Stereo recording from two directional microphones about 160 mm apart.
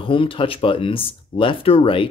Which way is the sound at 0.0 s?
35° left (ahead or behind).